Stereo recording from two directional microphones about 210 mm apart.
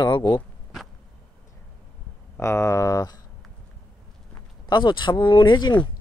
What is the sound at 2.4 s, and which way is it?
Speech, 15° left (ahead or behind).